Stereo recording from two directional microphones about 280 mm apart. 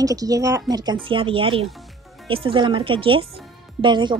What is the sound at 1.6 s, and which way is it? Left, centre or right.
Music, centre.